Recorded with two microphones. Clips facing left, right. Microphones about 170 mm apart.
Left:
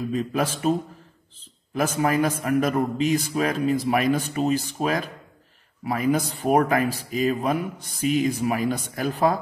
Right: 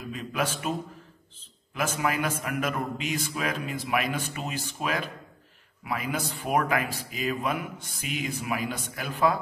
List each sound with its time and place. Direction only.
0.1 s speech: 35° left (ahead or behind)